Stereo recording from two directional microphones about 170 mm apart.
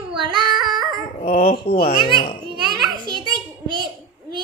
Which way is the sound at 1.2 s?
35° left (ahead or behind).